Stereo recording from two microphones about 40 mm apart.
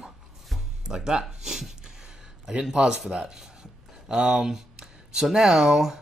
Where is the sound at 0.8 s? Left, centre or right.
Centre.